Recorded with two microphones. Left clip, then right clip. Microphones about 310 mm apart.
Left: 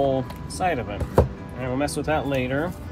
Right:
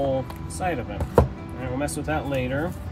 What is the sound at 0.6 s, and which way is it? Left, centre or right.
Speech, centre.